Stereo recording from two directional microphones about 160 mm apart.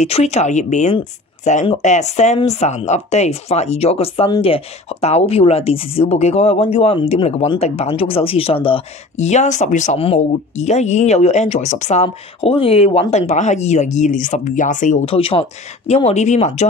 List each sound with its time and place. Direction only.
0.0 s a woman's voice: 45° left (ahead or behind)
15.0 s a woman's voice: 35° left (ahead or behind)